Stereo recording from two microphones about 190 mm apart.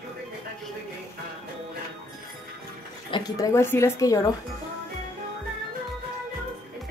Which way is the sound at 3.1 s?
15° left (ahead or behind).